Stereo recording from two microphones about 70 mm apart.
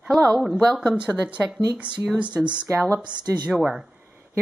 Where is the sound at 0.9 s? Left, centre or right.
Centre.